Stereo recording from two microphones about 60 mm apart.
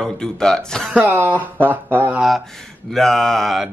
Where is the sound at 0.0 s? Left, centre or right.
Centre.